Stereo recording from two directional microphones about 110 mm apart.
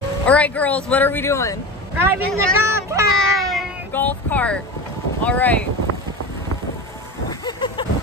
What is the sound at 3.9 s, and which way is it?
Speech, 15° left (ahead or behind).